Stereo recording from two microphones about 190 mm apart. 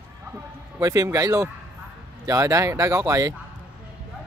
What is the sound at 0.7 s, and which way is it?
Speech, 15° right (ahead or behind).